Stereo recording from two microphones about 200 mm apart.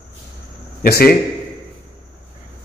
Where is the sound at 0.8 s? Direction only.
50° left (ahead or behind).